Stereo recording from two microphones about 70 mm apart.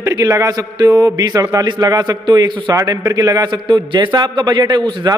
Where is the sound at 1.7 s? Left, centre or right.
Right.